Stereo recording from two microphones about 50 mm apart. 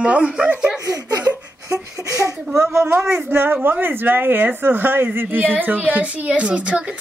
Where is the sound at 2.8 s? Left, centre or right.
Right.